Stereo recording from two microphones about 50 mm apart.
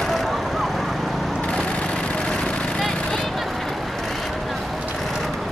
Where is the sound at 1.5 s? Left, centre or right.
Centre.